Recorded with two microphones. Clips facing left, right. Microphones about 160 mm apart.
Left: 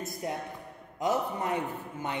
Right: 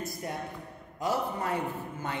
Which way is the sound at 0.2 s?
20° left (ahead or behind).